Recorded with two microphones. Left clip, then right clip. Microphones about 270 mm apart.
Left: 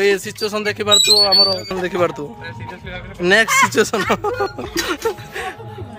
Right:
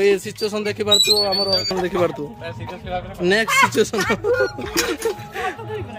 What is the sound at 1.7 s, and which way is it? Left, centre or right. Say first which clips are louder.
Speech: left 1 dB; centre.